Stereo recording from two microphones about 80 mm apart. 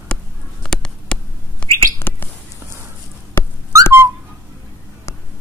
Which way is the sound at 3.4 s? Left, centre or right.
Left.